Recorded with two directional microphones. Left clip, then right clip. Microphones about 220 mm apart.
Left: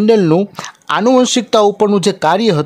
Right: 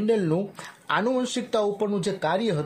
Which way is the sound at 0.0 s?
50° left (ahead or behind).